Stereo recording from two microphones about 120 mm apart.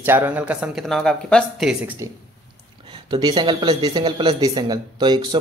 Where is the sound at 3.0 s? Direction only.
40° right (ahead or behind).